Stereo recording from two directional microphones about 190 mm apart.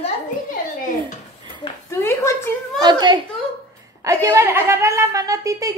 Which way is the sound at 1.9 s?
15° left (ahead or behind).